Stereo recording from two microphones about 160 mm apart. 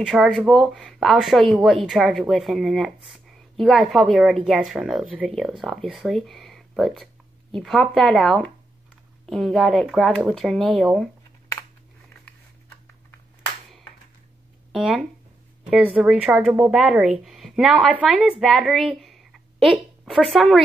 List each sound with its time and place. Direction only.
0.0 s speech: centre (ahead or behind)
14.7 s speech: 5° right (ahead or behind)
18.4 s a sound: centre (ahead or behind)
20.3 s speech: centre (ahead or behind)